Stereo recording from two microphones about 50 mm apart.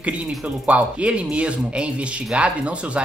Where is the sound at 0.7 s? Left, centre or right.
Right.